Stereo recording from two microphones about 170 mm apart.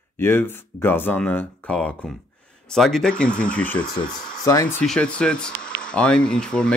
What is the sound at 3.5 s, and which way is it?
Speech, 10° left (ahead or behind).